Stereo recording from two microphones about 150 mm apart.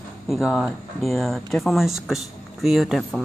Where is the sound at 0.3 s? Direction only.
Centre (ahead or behind).